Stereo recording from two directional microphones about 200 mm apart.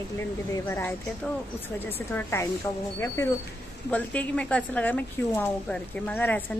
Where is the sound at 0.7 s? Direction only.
10° left (ahead or behind).